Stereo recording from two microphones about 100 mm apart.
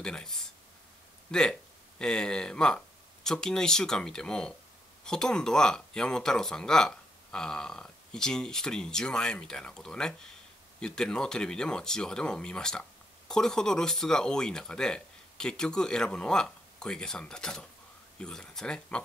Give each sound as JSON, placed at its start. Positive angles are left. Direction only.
{"t": 0.0, "sound": "speech", "side_deg": 5}